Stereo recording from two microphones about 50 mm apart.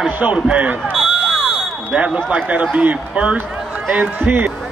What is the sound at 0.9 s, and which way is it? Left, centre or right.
Fire alarm, centre.